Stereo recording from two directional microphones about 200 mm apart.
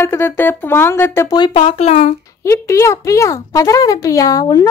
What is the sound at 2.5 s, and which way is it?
Speech, 15° left (ahead or behind).